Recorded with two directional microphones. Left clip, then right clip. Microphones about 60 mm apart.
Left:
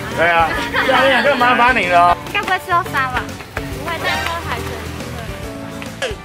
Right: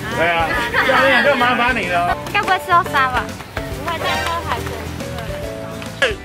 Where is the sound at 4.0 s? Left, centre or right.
Centre.